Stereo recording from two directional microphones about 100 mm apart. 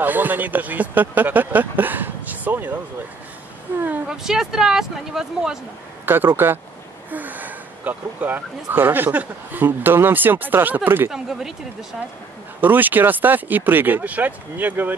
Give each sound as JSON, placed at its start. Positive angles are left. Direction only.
{"t": 0.0, "sound": "speech", "side_deg": -20}
{"t": 4.1, "sound": "speech", "side_deg": -5}
{"t": 6.0, "sound": "speech", "side_deg": -20}
{"t": 11.1, "sound": "speech", "side_deg": -5}
{"t": 12.5, "sound": "speech", "side_deg": -20}